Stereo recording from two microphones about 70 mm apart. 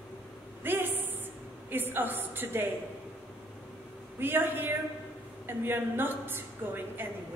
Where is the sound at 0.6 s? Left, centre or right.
Right.